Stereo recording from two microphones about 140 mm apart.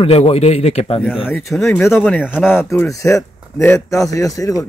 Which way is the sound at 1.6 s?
20° left (ahead or behind).